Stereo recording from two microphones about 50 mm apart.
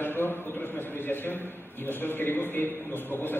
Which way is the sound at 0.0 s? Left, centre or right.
Left.